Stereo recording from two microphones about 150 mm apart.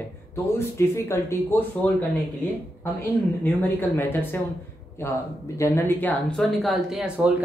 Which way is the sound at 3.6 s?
15° left (ahead or behind).